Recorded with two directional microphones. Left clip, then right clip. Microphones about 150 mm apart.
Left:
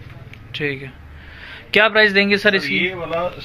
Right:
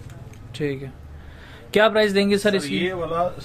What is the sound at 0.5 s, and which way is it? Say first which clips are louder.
A man's voice: left 4 dB; 30° right (ahead or behind).